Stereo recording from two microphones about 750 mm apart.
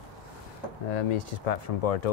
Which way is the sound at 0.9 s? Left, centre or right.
Left.